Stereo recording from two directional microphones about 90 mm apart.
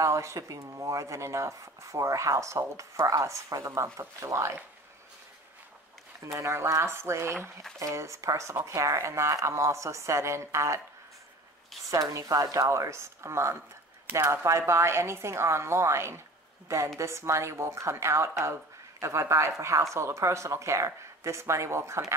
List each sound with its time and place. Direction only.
0.0 s speech: 35° right (ahead or behind)
6.3 s speech: 30° right (ahead or behind)
11.9 s speech: 40° right (ahead or behind)